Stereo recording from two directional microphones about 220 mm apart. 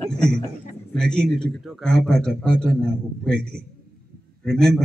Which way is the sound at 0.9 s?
5° left (ahead or behind).